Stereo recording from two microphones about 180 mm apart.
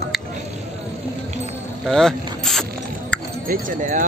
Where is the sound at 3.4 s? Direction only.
45° right (ahead or behind).